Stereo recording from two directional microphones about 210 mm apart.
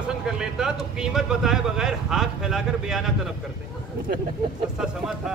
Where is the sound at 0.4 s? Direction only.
5° right (ahead or behind).